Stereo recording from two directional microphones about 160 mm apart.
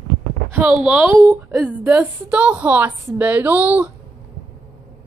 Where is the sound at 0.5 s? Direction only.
15° right (ahead or behind).